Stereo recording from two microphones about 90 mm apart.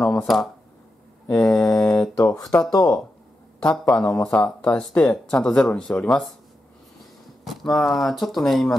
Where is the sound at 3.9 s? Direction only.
10° left (ahead or behind).